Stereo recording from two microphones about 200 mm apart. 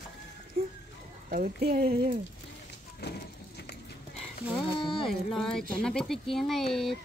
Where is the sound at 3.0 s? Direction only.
55° left (ahead or behind).